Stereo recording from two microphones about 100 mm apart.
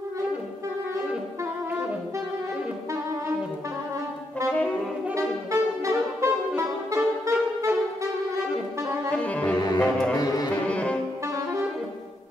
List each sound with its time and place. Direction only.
4.5 s saxophone: 15° left (ahead or behind)
5.1 s music: 30° right (ahead or behind)
7.0 s music: 20° right (ahead or behind)
9.1 s saxophone: 15° left (ahead or behind)
9.8 s music: 10° left (ahead or behind)
10.1 s music: 40° left (ahead or behind)
10.7 s saxophone: 10° left (ahead or behind)
11.2 s saxophone: 30° right (ahead or behind)